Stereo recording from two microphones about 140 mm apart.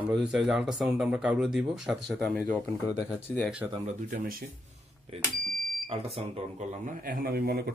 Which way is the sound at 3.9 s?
75° right (ahead or behind).